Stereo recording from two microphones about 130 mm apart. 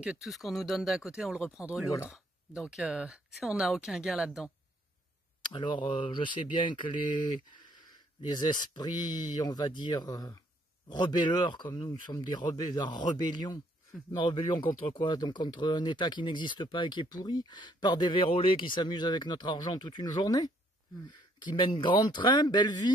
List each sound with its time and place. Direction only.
0.0 s speech: 5° right (ahead or behind)
5.4 s speech: 35° left (ahead or behind)